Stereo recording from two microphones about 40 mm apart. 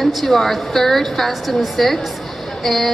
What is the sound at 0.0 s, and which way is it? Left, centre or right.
A woman's voice, centre.